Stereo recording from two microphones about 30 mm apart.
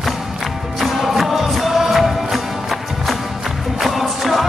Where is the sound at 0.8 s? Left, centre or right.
Centre.